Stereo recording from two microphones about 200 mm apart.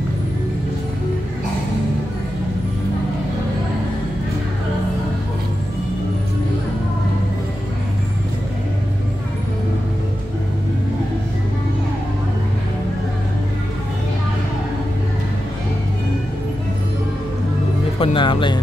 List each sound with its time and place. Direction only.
17.9 s speech: 25° left (ahead or behind)